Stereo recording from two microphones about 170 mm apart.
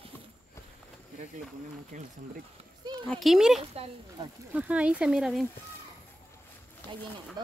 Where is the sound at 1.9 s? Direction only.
50° right (ahead or behind).